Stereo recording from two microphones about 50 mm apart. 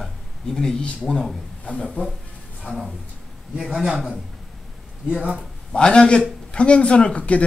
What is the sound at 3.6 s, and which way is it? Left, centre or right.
Speech, centre.